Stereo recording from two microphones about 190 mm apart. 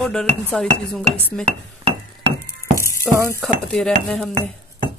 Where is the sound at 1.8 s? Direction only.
35° right (ahead or behind).